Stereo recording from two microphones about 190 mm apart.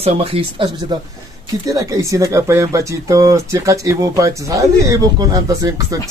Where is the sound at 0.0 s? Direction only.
30° right (ahead or behind).